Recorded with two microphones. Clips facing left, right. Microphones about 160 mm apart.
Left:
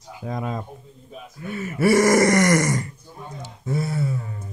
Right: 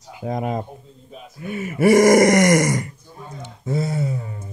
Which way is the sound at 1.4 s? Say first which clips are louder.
Right 3 dB; 20° right (ahead or behind).